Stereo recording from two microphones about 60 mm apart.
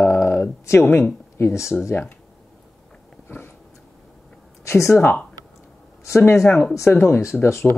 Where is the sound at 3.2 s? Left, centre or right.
Left.